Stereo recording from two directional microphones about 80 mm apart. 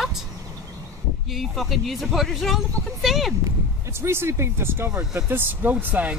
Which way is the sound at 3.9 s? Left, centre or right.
Right.